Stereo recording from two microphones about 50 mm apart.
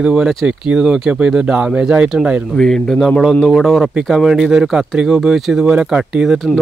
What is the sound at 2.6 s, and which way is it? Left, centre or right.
Speech, centre.